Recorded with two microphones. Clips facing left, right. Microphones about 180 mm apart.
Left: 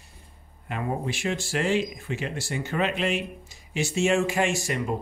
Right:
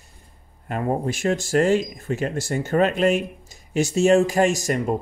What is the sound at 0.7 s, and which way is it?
Speech, 45° right (ahead or behind).